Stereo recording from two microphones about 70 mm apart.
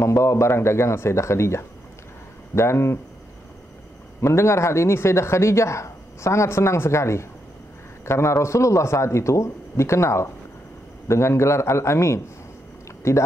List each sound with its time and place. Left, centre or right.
0.0 s speech: left
4.2 s a man's voice: left